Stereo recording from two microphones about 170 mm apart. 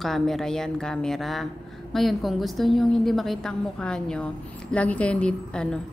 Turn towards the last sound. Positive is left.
turn(degrees=5)  # may be behind; listen again after turning